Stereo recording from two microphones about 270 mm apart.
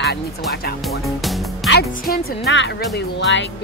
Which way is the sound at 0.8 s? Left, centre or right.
Centre.